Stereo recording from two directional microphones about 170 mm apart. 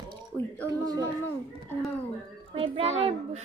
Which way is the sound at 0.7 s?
20° right (ahead or behind).